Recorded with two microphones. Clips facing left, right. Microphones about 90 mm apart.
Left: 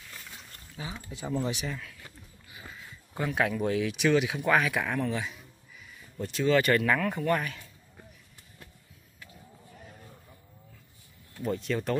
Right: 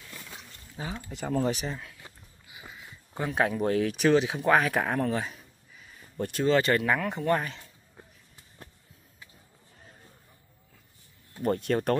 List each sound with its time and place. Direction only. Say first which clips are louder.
0.8 s speech: right 3 dB; 35° right (ahead or behind)
1.1 s speech: right 4 dB; 55° right (ahead or behind); by 1.8 s 40° right (ahead or behind)
1.8 s a sound: even; 25° right (ahead or behind)
3.3 s speech: right 2 dB; 30° right (ahead or behind)
6.1 s speech: right 3 dB; 55° right (ahead or behind)
6.4 s speech: even; 30° right (ahead or behind)
11.4 s speech: right 4 dB; 55° right (ahead or behind)